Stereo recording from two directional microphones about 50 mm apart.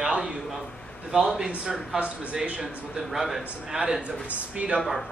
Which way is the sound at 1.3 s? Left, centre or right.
Centre.